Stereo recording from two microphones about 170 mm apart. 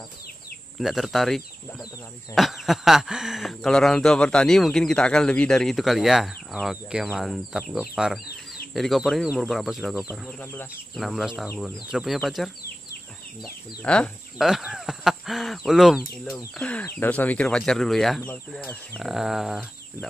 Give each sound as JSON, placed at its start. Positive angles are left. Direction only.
{"t": 0.7, "sound": "speech", "side_deg": 0}
{"t": 10.2, "sound": "speech", "side_deg": 10}
{"t": 11.0, "sound": "speech", "side_deg": 0}